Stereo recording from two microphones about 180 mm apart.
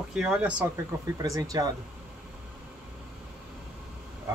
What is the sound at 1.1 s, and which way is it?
Speech, 20° right (ahead or behind).